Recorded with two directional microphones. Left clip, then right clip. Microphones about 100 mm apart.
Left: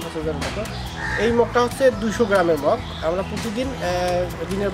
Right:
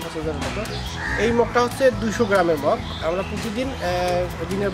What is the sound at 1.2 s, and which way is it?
A man's voice, 5° left (ahead or behind).